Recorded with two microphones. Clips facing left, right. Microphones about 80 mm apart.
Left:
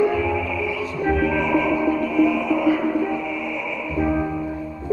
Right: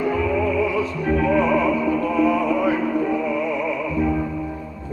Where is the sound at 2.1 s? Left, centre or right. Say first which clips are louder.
Even; right.